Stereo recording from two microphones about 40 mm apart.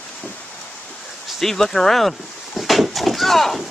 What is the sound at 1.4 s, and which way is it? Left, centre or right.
Speech, centre.